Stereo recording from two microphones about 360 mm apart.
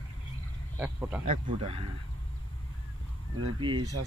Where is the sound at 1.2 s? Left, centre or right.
Centre.